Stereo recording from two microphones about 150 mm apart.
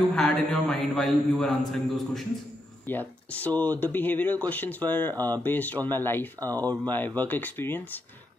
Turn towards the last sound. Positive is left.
turn(degrees=15)  # may be behind; listen again after turning